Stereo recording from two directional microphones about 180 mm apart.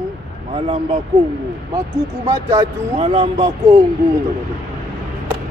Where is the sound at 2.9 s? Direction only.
30° right (ahead or behind).